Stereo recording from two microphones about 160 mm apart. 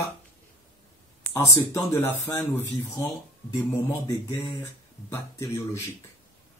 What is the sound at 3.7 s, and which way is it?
Speech, 15° left (ahead or behind).